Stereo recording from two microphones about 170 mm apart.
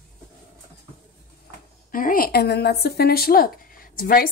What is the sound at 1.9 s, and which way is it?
Speech, 55° left (ahead or behind).